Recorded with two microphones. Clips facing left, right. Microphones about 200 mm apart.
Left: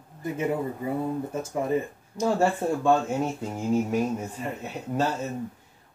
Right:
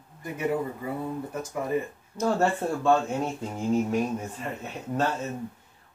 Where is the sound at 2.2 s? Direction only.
10° left (ahead or behind).